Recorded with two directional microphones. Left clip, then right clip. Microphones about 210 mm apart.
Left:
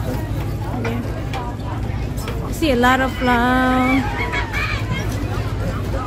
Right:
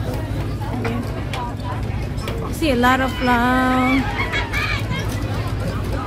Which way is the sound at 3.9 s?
50° right (ahead or behind).